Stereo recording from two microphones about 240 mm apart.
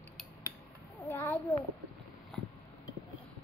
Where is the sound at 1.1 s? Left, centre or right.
Centre.